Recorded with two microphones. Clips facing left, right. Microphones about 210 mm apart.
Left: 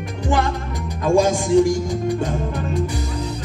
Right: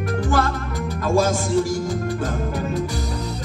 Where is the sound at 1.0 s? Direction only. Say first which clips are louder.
Left 3 dB; 15° left (ahead or behind).